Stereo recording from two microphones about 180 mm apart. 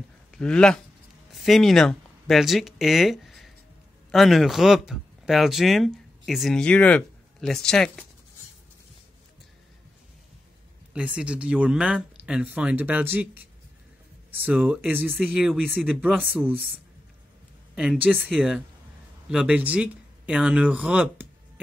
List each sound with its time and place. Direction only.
0.3 s speech: 5° left (ahead or behind)
10.9 s speech: 5° right (ahead or behind)
17.7 s speech: 5° right (ahead or behind)